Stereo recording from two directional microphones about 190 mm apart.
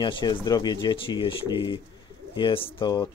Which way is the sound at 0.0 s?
25° left (ahead or behind).